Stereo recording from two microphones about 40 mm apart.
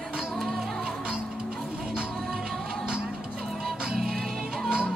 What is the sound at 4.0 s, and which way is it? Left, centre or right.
Music, centre.